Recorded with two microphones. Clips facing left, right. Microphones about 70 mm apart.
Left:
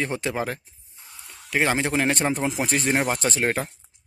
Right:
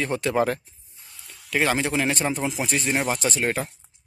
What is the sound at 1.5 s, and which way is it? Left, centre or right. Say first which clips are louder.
Speech: even; left.